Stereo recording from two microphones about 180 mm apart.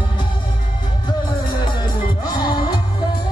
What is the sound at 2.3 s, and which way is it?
Music, 25° left (ahead or behind).